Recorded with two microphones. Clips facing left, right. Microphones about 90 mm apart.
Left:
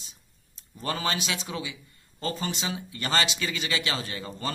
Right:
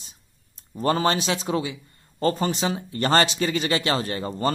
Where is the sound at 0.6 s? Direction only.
40° right (ahead or behind).